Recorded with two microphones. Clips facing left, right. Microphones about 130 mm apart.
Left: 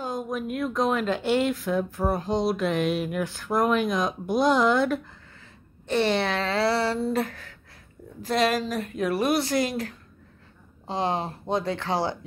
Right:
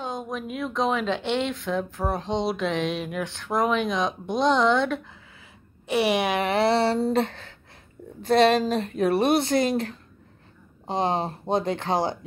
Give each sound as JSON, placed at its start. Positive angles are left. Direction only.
{"t": 0.0, "sound": "speech", "side_deg": 5}
{"t": 5.9, "sound": "speech", "side_deg": -10}